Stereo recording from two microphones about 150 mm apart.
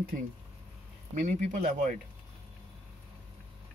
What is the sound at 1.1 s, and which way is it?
Speech, 60° right (ahead or behind).